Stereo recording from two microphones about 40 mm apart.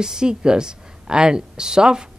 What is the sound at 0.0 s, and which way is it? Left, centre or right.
Speech, centre.